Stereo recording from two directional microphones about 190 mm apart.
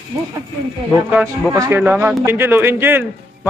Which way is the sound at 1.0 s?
10° right (ahead or behind).